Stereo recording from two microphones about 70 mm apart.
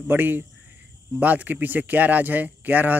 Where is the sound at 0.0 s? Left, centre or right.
Right.